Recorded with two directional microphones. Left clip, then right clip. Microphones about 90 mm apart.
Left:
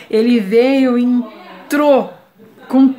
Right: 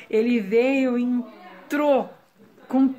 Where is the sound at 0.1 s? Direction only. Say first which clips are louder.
Left 8 dB; 25° left (ahead or behind).